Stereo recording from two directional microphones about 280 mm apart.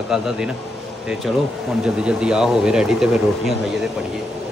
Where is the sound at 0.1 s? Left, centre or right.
Centre.